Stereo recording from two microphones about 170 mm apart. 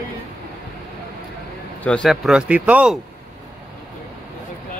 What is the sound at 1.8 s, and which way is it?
Speech, 5° left (ahead or behind).